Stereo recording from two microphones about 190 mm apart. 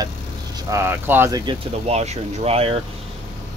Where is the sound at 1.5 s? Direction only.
35° right (ahead or behind).